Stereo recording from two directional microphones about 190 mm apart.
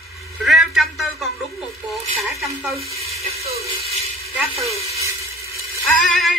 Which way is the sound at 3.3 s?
35° right (ahead or behind).